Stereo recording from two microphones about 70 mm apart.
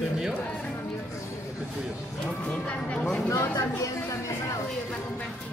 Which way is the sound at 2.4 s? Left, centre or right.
Centre.